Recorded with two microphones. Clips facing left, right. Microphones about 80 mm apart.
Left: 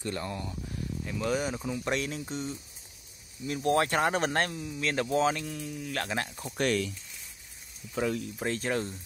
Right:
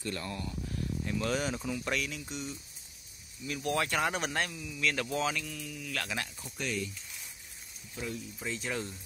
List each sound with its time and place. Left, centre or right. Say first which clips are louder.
0.0 s speech: left 3 dB; left
1.0 s speech: left 3 dB; centre
1.9 s speech: left 4 dB; left
6.5 s speech: left 8 dB; left
7.9 s speech: left 9 dB; left
8.4 s speech: left 3 dB; left